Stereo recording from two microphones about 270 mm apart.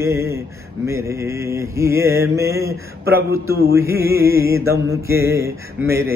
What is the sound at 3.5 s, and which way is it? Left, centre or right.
Mantra, right.